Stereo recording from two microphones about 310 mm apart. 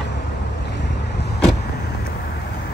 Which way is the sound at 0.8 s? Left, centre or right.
Left.